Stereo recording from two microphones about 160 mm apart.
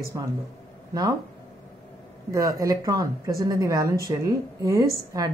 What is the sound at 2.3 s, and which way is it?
A woman's voice, 20° right (ahead or behind).